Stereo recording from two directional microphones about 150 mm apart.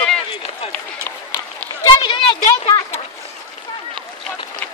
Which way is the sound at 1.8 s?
35° left (ahead or behind).